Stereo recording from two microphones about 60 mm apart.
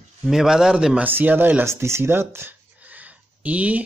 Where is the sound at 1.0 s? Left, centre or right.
Right.